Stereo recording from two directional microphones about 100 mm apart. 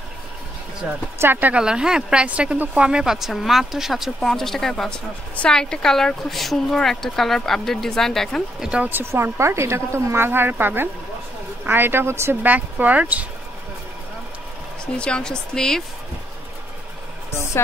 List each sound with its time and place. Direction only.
0.8 s speech: 5° right (ahead or behind)
1.2 s speech: 20° right (ahead or behind)
1.6 s speech: 5° right (ahead or behind)
8.6 s speech: 15° right (ahead or behind)
15.0 s speech: 10° left (ahead or behind)